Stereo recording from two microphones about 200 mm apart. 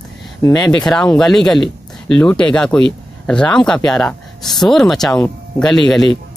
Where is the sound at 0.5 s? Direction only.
5° left (ahead or behind).